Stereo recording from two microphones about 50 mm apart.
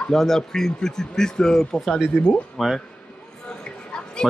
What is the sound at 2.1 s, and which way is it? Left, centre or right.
Speech, left.